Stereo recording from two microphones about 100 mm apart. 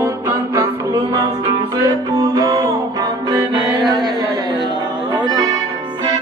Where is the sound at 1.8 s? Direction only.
40° right (ahead or behind).